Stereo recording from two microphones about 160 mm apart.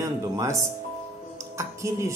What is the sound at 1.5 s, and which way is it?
Speech, 20° right (ahead or behind).